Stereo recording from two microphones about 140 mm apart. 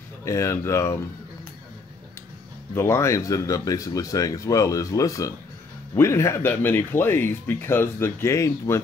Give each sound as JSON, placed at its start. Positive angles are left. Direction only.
{"t": 0.2, "sound": "speech", "side_deg": 20}
{"t": 2.7, "sound": "speech", "side_deg": 15}